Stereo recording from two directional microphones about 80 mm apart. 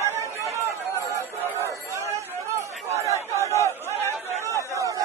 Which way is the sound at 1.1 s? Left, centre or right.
Right.